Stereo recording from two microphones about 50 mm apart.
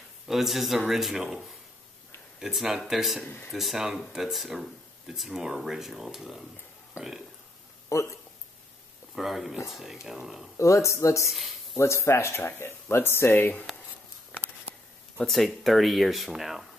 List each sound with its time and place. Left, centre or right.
0.3 s speech: centre
2.4 s speech: centre
7.9 s speech: left
9.1 s speech: centre
10.6 s speech: left
11.2 s speech: centre
11.8 s speech: left
15.1 s speech: centre